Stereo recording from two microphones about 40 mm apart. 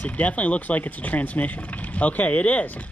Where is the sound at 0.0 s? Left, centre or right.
Left.